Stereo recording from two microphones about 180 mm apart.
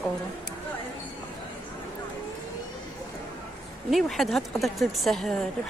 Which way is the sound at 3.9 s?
Centre (ahead or behind).